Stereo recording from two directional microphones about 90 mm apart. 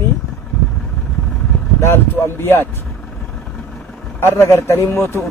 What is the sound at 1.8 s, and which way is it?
Speech, 30° left (ahead or behind).